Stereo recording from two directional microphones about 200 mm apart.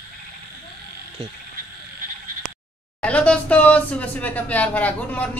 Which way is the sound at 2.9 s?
5° left (ahead or behind).